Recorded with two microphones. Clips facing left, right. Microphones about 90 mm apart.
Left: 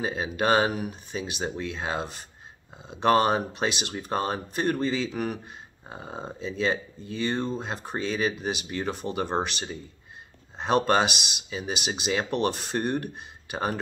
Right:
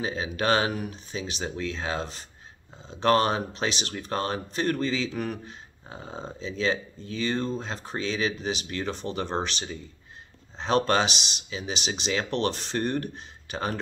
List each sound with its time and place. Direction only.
0.0 s speech: 5° left (ahead or behind)